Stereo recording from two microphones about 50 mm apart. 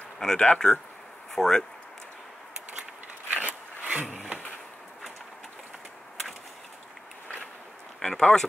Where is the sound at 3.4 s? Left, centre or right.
Right.